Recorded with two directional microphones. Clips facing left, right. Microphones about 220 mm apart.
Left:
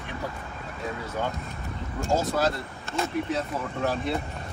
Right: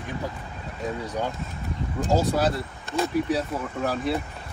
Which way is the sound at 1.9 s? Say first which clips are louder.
Right 3 dB; 15° right (ahead or behind).